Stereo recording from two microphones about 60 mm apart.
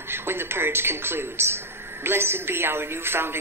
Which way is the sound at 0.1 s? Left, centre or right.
Right.